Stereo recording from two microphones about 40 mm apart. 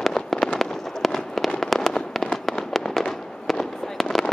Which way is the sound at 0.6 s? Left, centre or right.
Centre.